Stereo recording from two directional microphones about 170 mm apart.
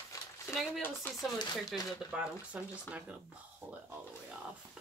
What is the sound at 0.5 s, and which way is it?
A woman's voice, centre (ahead or behind).